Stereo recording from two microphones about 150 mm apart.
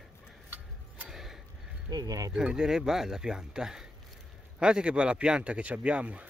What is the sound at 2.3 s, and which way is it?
Speech, 5° right (ahead or behind).